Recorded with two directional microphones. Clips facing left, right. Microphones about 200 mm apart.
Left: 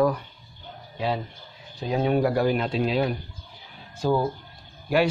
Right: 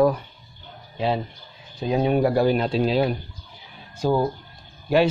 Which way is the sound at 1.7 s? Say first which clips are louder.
Right 2 dB; 20° right (ahead or behind).